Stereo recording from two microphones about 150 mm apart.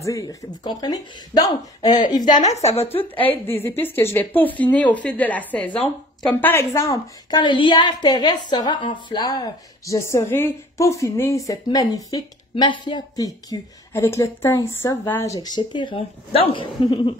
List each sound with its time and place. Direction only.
0.0 s a woman's voice: 20° left (ahead or behind)
2.3 s speech: 50° left (ahead or behind)
3.2 s a woman's voice: 15° left (ahead or behind); by 16.6 s 40° left (ahead or behind)
16.8 s cough: 30° left (ahead or behind)